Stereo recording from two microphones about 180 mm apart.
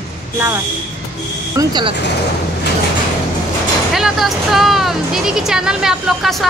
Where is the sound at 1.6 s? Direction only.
25° right (ahead or behind).